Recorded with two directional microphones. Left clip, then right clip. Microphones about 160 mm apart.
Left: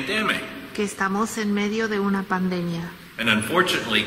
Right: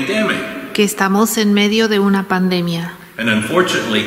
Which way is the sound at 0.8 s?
40° right (ahead or behind).